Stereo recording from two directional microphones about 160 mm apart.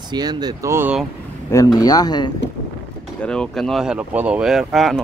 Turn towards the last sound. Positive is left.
turn(degrees=0)  # may be behind; listen again after turning